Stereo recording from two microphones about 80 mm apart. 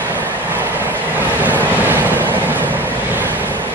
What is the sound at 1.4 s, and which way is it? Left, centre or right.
Vehicle, right.